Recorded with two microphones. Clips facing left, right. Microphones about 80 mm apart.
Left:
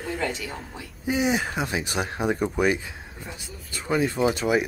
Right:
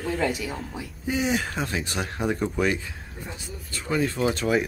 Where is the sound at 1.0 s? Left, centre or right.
Centre.